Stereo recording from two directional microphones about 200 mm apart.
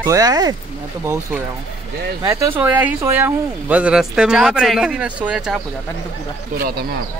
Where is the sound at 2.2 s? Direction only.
10° right (ahead or behind).